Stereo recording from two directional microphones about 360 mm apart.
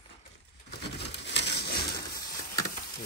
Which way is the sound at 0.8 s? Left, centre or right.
Left.